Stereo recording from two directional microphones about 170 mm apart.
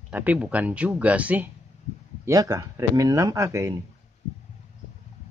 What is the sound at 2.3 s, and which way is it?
Speech, 20° right (ahead or behind).